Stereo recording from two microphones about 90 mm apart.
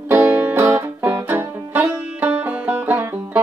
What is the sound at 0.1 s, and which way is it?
Music, 25° right (ahead or behind).